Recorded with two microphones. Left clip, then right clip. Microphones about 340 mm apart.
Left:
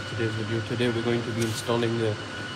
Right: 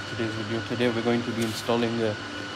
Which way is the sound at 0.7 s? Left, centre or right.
Right.